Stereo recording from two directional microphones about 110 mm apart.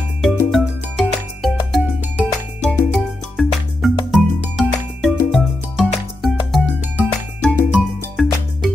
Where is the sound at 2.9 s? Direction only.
Centre (ahead or behind).